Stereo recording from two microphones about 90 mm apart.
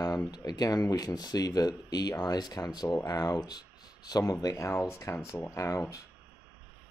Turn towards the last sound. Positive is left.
turn(degrees=35)  # may be behind; listen again after turning